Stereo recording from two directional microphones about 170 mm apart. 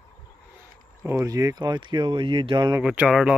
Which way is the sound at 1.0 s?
15° right (ahead or behind).